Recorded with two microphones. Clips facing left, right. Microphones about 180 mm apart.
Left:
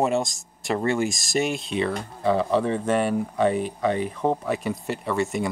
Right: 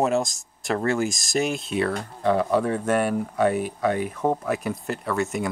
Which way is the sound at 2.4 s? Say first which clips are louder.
Even; 5° right (ahead or behind).